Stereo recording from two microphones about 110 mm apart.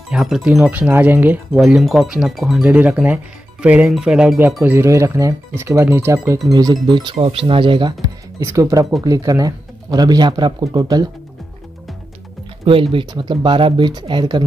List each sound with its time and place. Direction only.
0.1 s speech: 5° right (ahead or behind)
1.8 s speech: centre (ahead or behind)
4.6 s speech: 25° right (ahead or behind)
6.5 s speech: 35° right (ahead or behind)
7.2 s speech: 55° right (ahead or behind)
8.4 s speech: 30° right (ahead or behind)
12.6 s speech: 55° right (ahead or behind)